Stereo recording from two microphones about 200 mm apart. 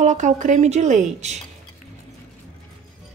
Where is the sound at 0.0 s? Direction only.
35° right (ahead or behind).